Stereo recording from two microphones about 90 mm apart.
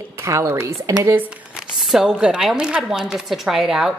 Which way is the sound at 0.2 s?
35° right (ahead or behind).